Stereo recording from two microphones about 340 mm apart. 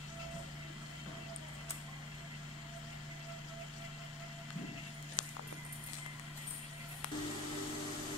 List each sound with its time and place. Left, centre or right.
5.2 s horse: left